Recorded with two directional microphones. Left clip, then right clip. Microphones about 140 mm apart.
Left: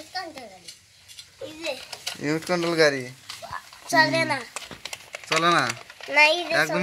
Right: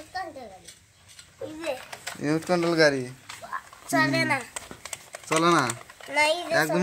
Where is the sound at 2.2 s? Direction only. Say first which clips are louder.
Right 1 dB; centre (ahead or behind).